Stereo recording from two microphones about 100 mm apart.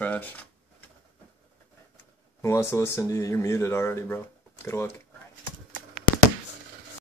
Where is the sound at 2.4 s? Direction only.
30° left (ahead or behind).